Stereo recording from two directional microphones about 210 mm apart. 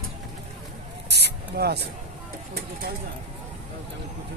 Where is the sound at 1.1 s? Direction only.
50° right (ahead or behind).